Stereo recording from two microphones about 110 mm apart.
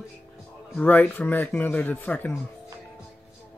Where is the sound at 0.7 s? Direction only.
15° left (ahead or behind).